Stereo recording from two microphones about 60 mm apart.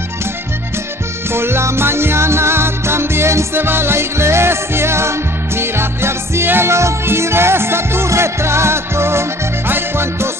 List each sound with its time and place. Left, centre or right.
1.3 s music: right